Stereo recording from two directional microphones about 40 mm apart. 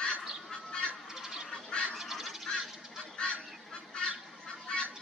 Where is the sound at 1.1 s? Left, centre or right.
Centre.